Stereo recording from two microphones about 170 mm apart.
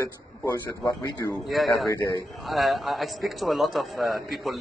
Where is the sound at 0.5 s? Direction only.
15° left (ahead or behind).